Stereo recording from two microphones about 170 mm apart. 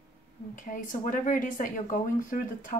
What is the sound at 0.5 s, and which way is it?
Speech, 50° left (ahead or behind).